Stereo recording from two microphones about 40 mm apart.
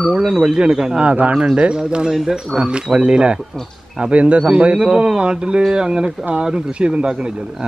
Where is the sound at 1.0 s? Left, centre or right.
Right.